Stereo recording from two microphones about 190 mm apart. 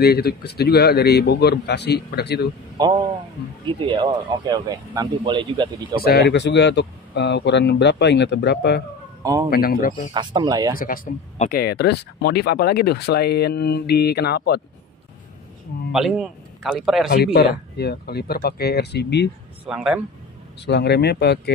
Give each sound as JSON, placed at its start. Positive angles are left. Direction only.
{"t": 0.0, "sound": "speech", "side_deg": 55}
{"t": 2.8, "sound": "speech", "side_deg": -20}
{"t": 6.0, "sound": "speech", "side_deg": 60}
{"t": 9.2, "sound": "a man's voice", "side_deg": -20}
{"t": 9.5, "sound": "speech", "side_deg": 50}
{"t": 10.1, "sound": "speech", "side_deg": -20}
{"t": 10.8, "sound": "speech", "side_deg": 50}
{"t": 15.9, "sound": "a man's voice", "side_deg": -5}
{"t": 17.1, "sound": "speech", "side_deg": 55}
{"t": 19.7, "sound": "a man's voice", "side_deg": -5}
{"t": 20.6, "sound": "speech", "side_deg": 60}